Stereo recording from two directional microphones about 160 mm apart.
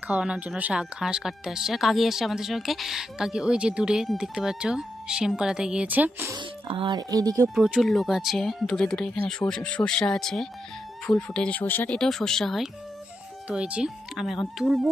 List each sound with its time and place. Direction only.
0.1 s speech: 5° right (ahead or behind)
6.3 s speech: 30° right (ahead or behind)
7.4 s speech: centre (ahead or behind)